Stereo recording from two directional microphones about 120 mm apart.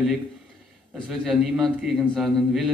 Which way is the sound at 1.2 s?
Centre (ahead or behind).